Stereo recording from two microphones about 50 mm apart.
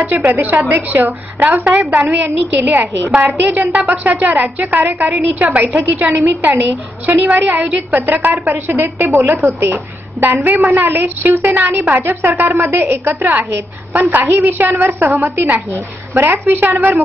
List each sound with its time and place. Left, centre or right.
0.2 s a woman's voice: right
3.9 s a woman's voice: right
9.5 s a woman's voice: right
10.2 s a woman's voice: right
13.9 s a woman's voice: right